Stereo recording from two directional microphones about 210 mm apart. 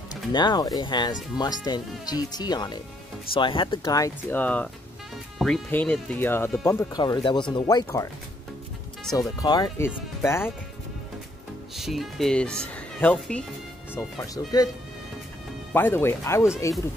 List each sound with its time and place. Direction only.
0.3 s speech: 20° left (ahead or behind)
9.1 s speech: 15° left (ahead or behind)
11.7 s speech: centre (ahead or behind); by 14.7 s 15° left (ahead or behind)
15.7 s speech: 10° left (ahead or behind)